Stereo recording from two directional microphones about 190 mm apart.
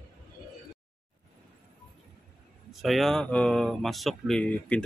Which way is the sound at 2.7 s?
Centre (ahead or behind).